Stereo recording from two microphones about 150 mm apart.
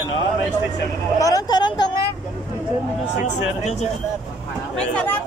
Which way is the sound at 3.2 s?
50° left (ahead or behind).